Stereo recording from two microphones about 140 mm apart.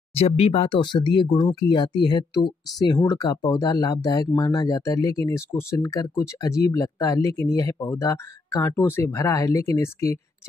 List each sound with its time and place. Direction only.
0.1 s speech: 45° left (ahead or behind); by 10.1 s 20° left (ahead or behind)